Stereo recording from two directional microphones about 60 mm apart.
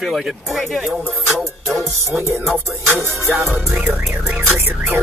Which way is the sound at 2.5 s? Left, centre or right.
Right.